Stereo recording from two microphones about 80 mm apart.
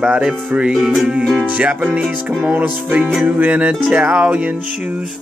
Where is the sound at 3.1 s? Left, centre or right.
Centre.